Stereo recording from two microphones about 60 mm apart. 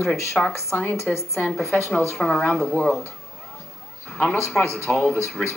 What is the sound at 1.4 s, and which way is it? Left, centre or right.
Speech, left.